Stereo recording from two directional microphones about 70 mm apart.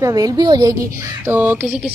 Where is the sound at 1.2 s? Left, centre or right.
Right.